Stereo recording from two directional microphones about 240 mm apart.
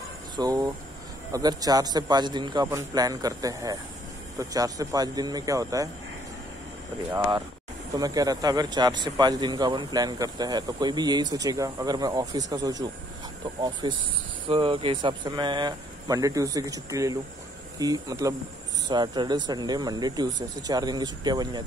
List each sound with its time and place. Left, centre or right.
0.4 s speech: centre
7.1 s speech: centre
13.8 s speech: centre